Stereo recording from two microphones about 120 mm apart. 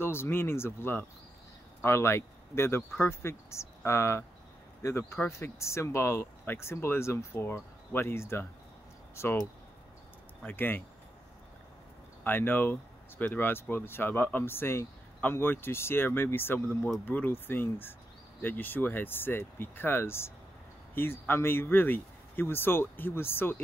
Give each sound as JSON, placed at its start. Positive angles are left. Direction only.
{"t": 0.0, "sound": "speech", "side_deg": 20}
{"t": 12.2, "sound": "speech", "side_deg": 15}